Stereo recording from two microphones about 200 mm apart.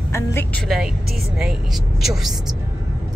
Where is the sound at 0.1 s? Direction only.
10° left (ahead or behind).